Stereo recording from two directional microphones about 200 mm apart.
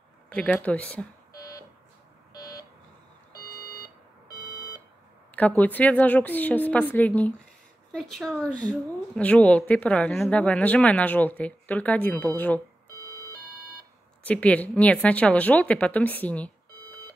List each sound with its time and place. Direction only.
0.3 s speech: 5° left (ahead or behind)
2.3 s buzzer: 15° left (ahead or behind)
3.3 s alarm clock: 20° left (ahead or behind)
5.3 s a woman's voice: 10° left (ahead or behind)
14.2 s a woman's voice: 5° left (ahead or behind)